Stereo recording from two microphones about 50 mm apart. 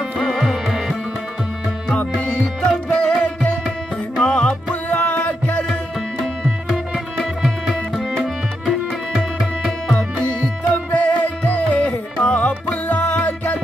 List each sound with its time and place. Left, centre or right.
0.2 s music: centre
2.1 s music: centre
4.8 s music: left
8.2 s tabla: centre
9.7 s tabla: centre
10.7 s music: left
12.2 s music: left